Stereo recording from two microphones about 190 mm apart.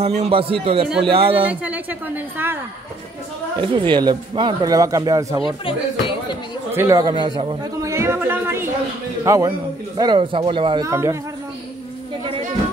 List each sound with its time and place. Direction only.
0.0 s speech: 35° right (ahead or behind)
1.5 s a man's voice: 10° right (ahead or behind)
3.5 s speech: 25° right (ahead or behind)
5.7 s a sound: 25° left (ahead or behind)
6.7 s a man's voice: 15° right (ahead or behind)